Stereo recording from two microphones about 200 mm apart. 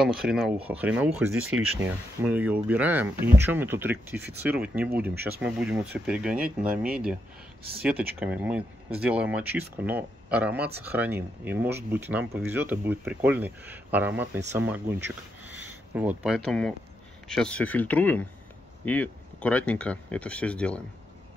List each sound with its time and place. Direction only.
0.0 s speech: 5° right (ahead or behind)
5.1 s speech: 55° right (ahead or behind)
5.4 s speech: 5° right (ahead or behind)
8.2 s speech: 5° right (ahead or behind)
15.4 s a sound: 10° right (ahead or behind)
16.3 s speech: 5° left (ahead or behind)